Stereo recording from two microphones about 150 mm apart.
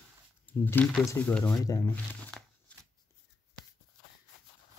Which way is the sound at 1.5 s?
20° left (ahead or behind).